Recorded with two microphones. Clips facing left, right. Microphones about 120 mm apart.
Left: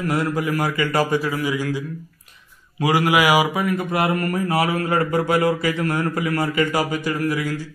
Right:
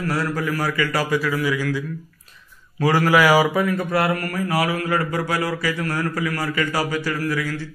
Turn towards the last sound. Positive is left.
turn(degrees=20)  # may be behind; listen again after turning